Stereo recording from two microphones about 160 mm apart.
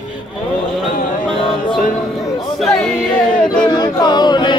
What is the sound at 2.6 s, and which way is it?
A capella, centre (ahead or behind).